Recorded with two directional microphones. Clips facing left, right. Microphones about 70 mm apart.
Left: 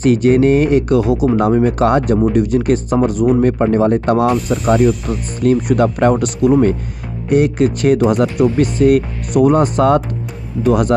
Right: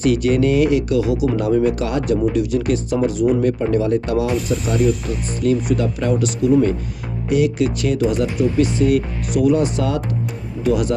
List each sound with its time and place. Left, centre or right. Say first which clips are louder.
0.0 s speech: left 5 dB; left
4.8 s speech: left 4 dB; centre
5.4 s speech: left 5 dB; left